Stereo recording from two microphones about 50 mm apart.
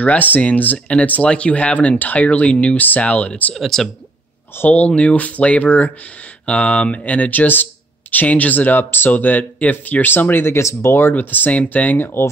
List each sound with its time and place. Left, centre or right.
0.0 s speech: left
3.5 s speech: centre
4.6 s speech: left
10.6 s speech: left
10.9 s speech: left